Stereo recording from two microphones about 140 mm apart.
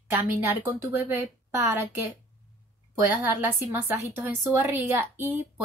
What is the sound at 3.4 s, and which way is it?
A woman's voice, 15° right (ahead or behind).